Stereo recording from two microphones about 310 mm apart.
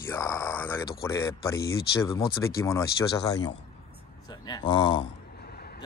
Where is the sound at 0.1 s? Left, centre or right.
Centre.